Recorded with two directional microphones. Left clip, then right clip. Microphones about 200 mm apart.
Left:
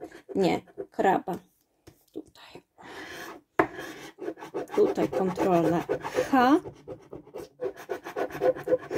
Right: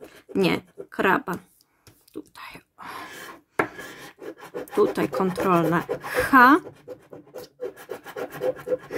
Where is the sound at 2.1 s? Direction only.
25° right (ahead or behind).